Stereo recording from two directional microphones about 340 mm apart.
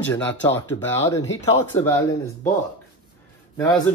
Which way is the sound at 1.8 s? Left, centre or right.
Centre.